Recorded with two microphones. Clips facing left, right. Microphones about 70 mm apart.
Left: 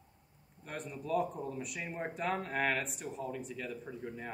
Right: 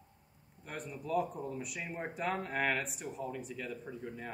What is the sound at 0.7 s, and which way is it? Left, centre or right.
A man's voice, centre.